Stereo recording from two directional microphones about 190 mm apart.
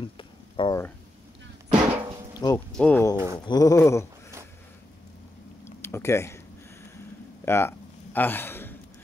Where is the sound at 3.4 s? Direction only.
20° left (ahead or behind).